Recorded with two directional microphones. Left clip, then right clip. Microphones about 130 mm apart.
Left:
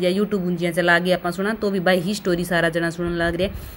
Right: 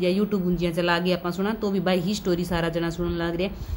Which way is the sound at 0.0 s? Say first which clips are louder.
Left 3 dB; 15° left (ahead or behind).